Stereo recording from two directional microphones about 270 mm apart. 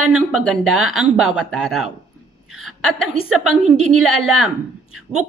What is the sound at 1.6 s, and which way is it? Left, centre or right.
Speech, centre.